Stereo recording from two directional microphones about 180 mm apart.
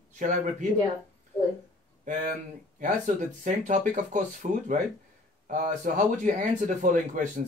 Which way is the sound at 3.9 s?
45° right (ahead or behind).